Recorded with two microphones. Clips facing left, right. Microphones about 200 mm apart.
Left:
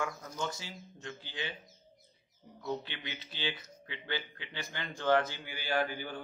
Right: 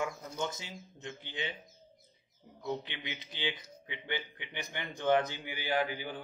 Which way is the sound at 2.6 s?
20° right (ahead or behind).